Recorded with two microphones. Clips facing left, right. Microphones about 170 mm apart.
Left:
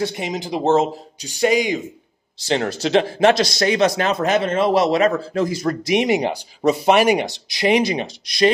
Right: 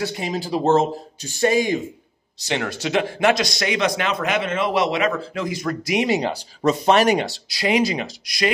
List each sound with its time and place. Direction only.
0.0 s speech: 20° left (ahead or behind)
2.4 s a man's voice: 30° left (ahead or behind)
5.9 s speech: 15° left (ahead or behind)